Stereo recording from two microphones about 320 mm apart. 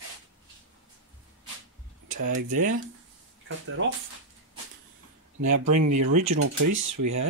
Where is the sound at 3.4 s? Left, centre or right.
Right.